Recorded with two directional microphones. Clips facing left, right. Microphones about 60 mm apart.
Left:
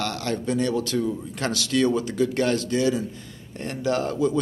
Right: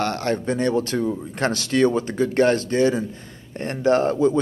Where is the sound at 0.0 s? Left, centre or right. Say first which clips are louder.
Right 4 dB; right.